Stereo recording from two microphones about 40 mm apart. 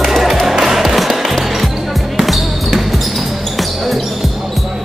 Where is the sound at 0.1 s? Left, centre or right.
Centre.